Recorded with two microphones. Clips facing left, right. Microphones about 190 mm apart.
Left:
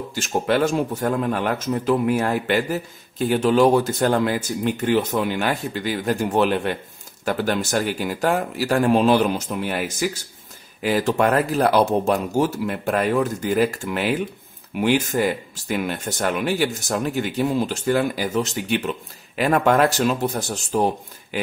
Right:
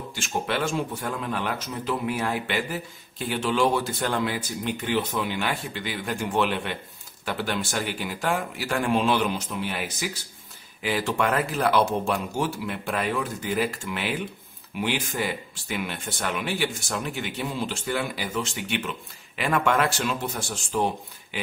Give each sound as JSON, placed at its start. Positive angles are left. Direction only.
{"t": 0.1, "sound": "speech", "side_deg": 40}